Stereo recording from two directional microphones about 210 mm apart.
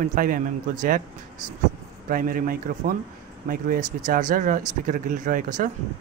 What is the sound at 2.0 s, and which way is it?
Speech, 40° right (ahead or behind).